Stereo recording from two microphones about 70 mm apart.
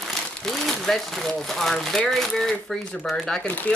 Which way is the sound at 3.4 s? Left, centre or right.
Left.